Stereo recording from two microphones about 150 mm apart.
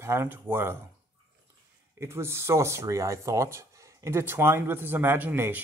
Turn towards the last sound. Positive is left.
turn(degrees=-10)  # may be behind; listen again after turning